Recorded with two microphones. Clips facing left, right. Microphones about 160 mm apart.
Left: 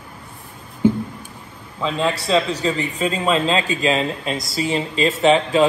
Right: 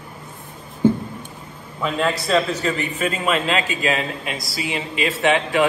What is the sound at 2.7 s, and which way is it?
A man's voice, 30° left (ahead or behind).